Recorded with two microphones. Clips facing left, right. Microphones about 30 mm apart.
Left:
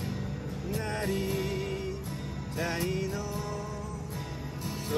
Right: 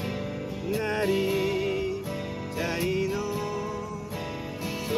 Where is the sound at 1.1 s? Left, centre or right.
Right.